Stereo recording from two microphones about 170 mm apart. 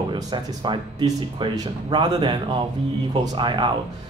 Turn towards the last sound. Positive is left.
turn(degrees=-25)  # may be behind; listen again after turning